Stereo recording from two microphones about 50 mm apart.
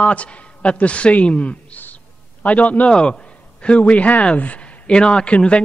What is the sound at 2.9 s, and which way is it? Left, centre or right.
A man's voice, centre.